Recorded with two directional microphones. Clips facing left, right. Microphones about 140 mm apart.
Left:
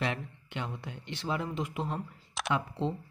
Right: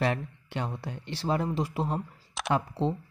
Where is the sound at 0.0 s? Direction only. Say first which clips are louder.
Right 5 dB; 40° right (ahead or behind).